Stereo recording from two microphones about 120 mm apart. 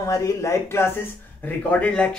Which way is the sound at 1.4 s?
10° left (ahead or behind).